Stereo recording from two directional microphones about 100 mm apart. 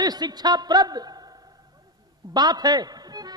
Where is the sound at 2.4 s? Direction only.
45° right (ahead or behind).